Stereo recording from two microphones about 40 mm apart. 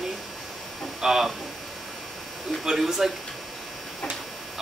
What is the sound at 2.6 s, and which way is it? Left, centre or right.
Speech, centre.